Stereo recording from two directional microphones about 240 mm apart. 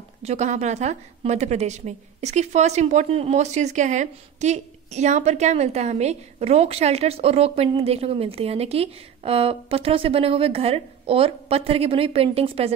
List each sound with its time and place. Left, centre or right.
0.2 s a woman's voice: right